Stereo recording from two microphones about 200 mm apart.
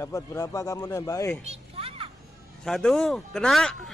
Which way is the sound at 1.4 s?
30° right (ahead or behind).